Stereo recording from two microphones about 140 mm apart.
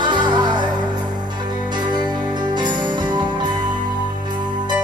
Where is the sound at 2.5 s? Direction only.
30° right (ahead or behind).